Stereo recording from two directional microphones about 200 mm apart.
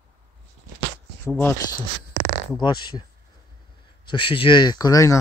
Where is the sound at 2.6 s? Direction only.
20° left (ahead or behind).